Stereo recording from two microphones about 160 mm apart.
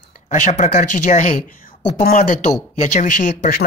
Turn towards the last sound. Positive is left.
turn(degrees=50)  # may be behind; listen again after turning